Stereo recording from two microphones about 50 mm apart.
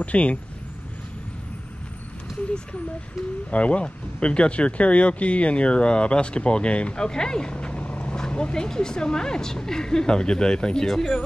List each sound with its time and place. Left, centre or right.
0.0 s speech: left
3.4 s speech: left; by 11.1 s centre